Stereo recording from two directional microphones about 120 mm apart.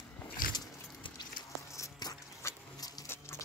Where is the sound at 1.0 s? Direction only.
45° left (ahead or behind).